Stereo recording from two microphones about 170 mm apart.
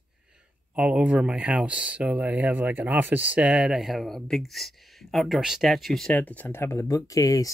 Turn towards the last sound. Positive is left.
turn(degrees=20)  # may be behind; listen again after turning